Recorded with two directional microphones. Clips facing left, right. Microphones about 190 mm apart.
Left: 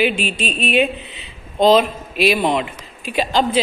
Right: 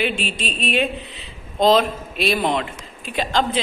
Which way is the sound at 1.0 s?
Centre (ahead or behind).